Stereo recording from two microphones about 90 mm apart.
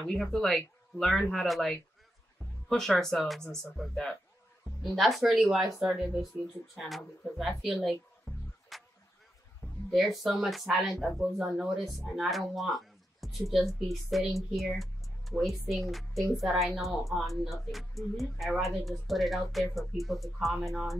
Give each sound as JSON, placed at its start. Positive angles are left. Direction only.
{"t": 0.0, "sound": "speech", "side_deg": 5}
{"t": 9.8, "sound": "speech", "side_deg": 0}